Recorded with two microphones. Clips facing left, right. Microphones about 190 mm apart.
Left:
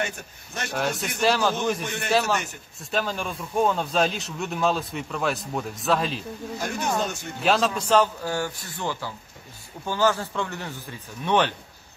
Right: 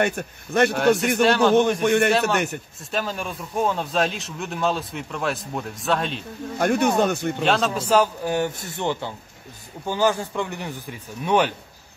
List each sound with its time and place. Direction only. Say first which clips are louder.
0.0 s a man's voice: right 8 dB; 60° right (ahead or behind)
0.7 s a man's voice: right 8 dB; centre (ahead or behind)
1.8 s a man's voice: right 13 dB; 60° right (ahead or behind)
2.0 s a man's voice: right 3 dB; centre (ahead or behind)
6.6 s a man's voice: right 8 dB; 60° right (ahead or behind)
7.4 s a man's voice: even; centre (ahead or behind)